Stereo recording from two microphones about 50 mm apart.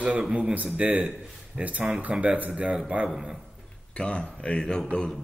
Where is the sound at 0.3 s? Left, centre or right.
Right.